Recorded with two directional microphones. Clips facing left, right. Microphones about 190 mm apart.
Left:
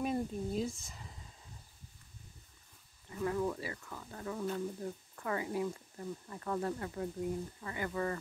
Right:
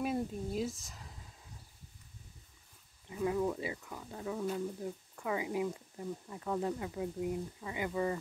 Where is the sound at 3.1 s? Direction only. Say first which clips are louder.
Right 2 dB; 10° right (ahead or behind).